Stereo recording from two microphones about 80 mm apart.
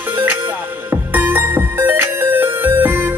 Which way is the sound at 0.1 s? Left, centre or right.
Right.